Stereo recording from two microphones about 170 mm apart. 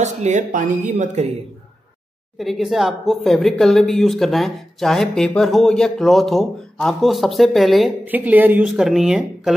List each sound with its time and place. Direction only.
0.0 s speech: 45° right (ahead or behind)
2.3 s speech: centre (ahead or behind)
8.0 s speech: 10° right (ahead or behind)